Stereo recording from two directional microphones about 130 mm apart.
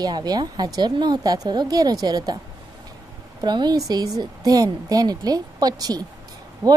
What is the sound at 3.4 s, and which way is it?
Speech, 35° right (ahead or behind).